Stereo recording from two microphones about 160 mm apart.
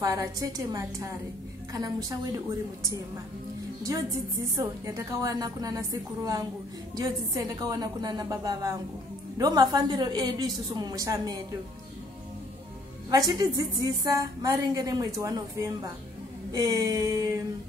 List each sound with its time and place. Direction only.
0.0 s a woman's voice: 20° right (ahead or behind)
13.3 s a woman's voice: 25° right (ahead or behind)